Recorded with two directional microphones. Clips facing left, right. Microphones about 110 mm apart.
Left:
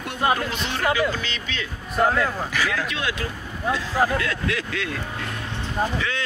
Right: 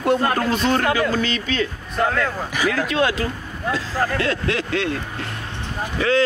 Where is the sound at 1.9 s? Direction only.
5° left (ahead or behind).